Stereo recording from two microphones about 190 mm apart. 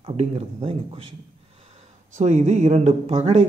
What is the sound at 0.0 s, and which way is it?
Speech, 35° right (ahead or behind).